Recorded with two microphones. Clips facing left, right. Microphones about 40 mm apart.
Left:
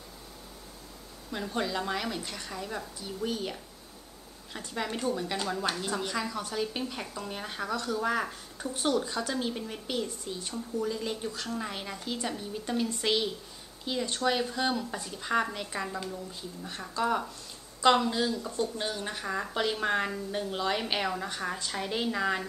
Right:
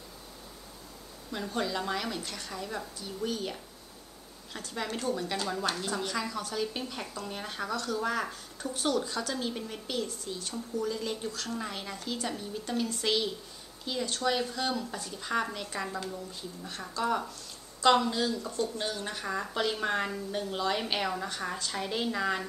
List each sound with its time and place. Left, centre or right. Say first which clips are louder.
1.3 s a woman's voice: left 1 dB; centre
4.6 s a woman's voice: left 1 dB; centre
10.5 s a woman's voice: left 1 dB; centre